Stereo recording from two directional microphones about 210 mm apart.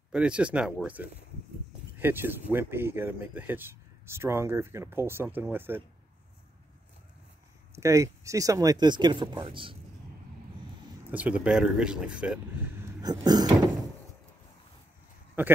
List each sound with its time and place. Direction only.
0.1 s speech: 5° right (ahead or behind)
2.0 s speech: 10° right (ahead or behind)
7.7 s speech: 15° right (ahead or behind)
11.1 s speech: 5° right (ahead or behind)
13.0 s speech: 20° right (ahead or behind)
15.4 s speech: 10° right (ahead or behind)